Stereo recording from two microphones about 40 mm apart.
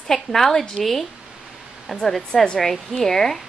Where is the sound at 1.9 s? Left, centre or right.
Centre.